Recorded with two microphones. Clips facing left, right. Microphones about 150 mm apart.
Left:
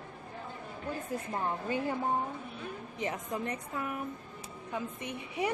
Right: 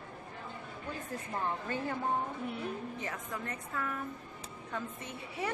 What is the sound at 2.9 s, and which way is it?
A woman's voice, 20° left (ahead or behind).